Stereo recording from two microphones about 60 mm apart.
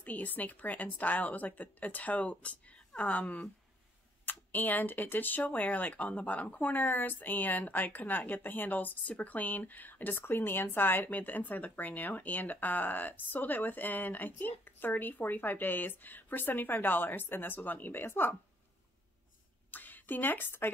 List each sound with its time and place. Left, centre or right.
0.0 s a woman's voice: left
2.6 s a sound: left
4.3 s speech: left
19.7 s a woman's voice: left